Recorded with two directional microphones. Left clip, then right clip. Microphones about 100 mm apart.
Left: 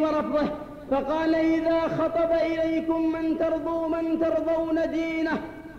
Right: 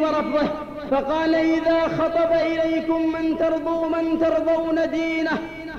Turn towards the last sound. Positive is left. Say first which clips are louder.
# right 4 dB
turn(degrees=45)  # may be behind; listen again after turning